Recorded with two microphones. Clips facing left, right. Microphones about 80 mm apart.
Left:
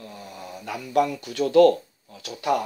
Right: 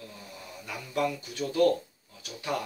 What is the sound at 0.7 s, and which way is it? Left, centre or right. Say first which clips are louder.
Speech: left 7 dB; left.